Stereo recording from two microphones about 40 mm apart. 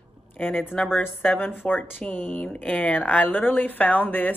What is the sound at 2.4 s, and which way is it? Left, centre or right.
Speech, left.